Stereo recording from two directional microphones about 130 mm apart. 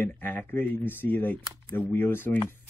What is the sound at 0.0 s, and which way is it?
Speech, 15° left (ahead or behind).